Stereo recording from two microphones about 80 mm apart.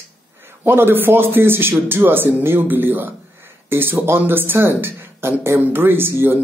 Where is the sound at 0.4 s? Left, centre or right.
Right.